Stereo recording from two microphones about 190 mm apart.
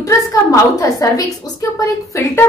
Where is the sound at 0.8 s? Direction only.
20° left (ahead or behind).